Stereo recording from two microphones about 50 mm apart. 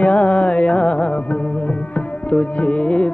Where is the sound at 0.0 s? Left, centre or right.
Left.